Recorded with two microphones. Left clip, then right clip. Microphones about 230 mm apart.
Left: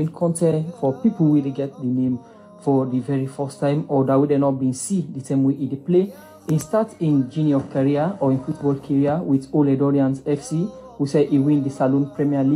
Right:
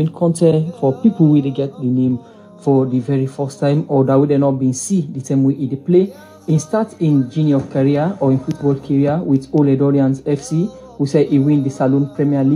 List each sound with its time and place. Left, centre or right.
0.0 s speech: right